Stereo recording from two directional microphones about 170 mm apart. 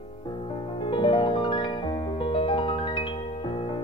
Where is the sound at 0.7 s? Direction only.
30° left (ahead or behind).